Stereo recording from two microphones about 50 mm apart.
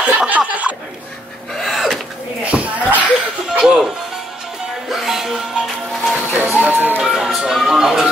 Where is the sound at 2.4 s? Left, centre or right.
Right.